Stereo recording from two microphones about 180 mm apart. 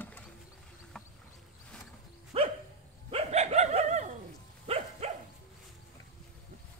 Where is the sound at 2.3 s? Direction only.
35° right (ahead or behind).